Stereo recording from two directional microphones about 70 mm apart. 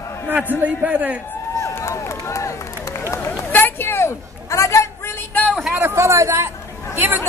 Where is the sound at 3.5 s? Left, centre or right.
Left.